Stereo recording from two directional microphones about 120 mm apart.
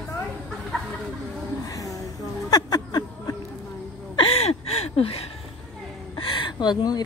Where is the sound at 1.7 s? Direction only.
30° left (ahead or behind).